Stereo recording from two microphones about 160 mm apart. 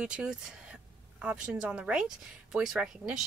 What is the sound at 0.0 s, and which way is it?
Speech, 5° right (ahead or behind).